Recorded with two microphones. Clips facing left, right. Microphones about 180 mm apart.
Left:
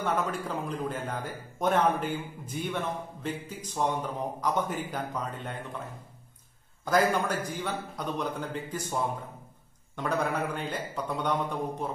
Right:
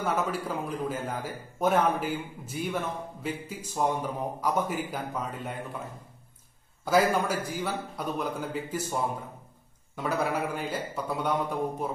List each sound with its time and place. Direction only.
0.0 s a man's voice: 5° right (ahead or behind)
6.8 s a man's voice: 5° right (ahead or behind)
9.9 s a man's voice: 5° right (ahead or behind)